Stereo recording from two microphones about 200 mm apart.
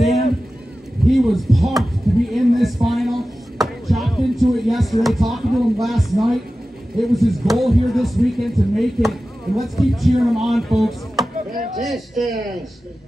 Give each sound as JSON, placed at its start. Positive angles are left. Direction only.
{"t": 1.0, "sound": "a sound", "side_deg": 0}
{"t": 7.0, "sound": "speech", "side_deg": 0}
{"t": 11.3, "sound": "chop", "side_deg": -40}
{"t": 11.8, "sound": "speech", "side_deg": 0}